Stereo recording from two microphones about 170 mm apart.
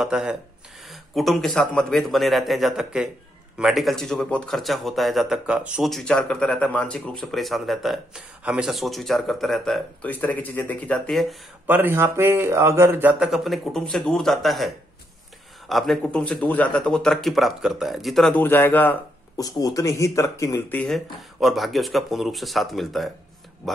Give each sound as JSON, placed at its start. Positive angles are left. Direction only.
{"t": 0.0, "sound": "speech", "side_deg": -5}
{"t": 11.6, "sound": "speech", "side_deg": -10}
{"t": 15.7, "sound": "speech", "side_deg": 0}
{"t": 19.3, "sound": "speech", "side_deg": 20}
{"t": 20.8, "sound": "speech", "side_deg": 0}